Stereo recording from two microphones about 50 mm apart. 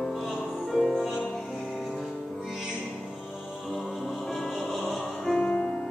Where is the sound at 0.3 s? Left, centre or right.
Centre.